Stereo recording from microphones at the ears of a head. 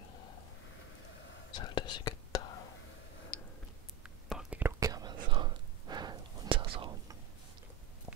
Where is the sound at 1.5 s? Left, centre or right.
Left.